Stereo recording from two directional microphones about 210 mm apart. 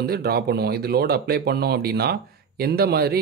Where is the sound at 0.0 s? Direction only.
50° right (ahead or behind).